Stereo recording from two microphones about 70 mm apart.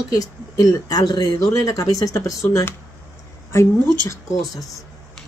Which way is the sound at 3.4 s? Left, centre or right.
Left.